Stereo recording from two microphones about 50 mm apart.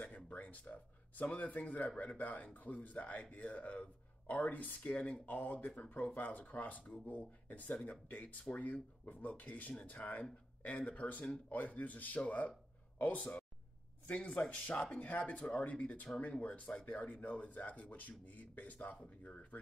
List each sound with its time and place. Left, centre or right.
0.1 s speech: left
4.8 s speech: left